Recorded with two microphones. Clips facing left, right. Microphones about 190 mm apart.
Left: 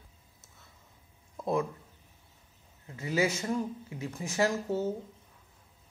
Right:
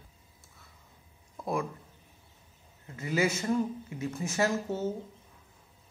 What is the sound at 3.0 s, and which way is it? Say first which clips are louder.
Speech: even; 15° left (ahead or behind).